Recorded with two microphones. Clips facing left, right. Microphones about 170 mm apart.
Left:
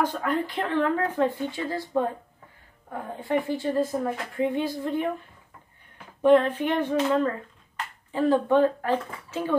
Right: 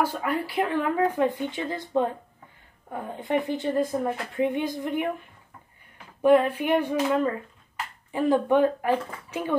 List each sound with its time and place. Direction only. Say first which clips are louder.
0.0 s speech: left 1 dB; 10° right (ahead or behind)
3.2 s speech: even; 20° right (ahead or behind)
6.2 s speech: even; 10° right (ahead or behind)